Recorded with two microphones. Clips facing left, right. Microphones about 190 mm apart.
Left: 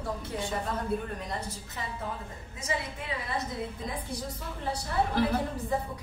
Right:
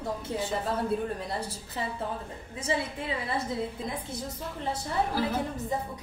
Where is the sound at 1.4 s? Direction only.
30° right (ahead or behind).